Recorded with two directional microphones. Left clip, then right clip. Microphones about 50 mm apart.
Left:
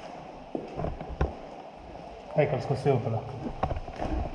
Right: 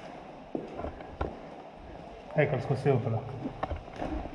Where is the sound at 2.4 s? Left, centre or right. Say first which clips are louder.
Left 2 dB; right.